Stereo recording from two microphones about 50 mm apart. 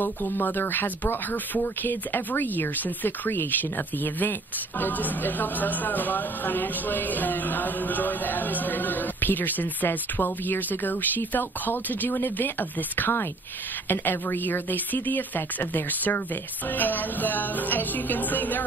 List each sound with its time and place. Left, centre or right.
0.0 s speech: left